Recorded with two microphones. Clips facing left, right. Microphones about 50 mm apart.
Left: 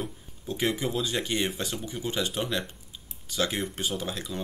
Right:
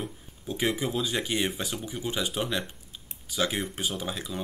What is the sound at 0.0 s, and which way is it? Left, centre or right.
Speech, centre.